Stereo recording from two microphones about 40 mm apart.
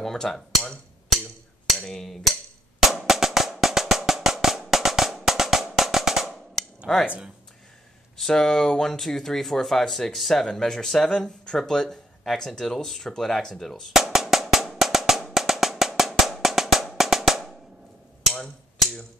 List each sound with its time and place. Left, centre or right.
0.0 s speech: centre
1.9 s speech: centre
2.8 s music: centre
6.9 s speech: centre
8.2 s speech: centre
10.4 s speech: centre
13.9 s drum: centre